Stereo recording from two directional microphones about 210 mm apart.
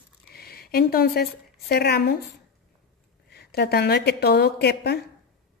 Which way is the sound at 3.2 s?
50° left (ahead or behind).